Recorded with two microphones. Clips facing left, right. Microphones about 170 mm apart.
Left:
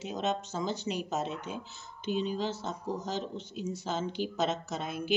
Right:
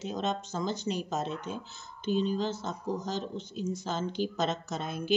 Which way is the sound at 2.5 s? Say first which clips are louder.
Right 1 dB; 15° right (ahead or behind).